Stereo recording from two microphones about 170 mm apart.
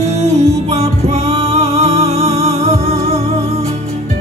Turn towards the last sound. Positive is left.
turn(degrees=-40)  # may be behind; listen again after turning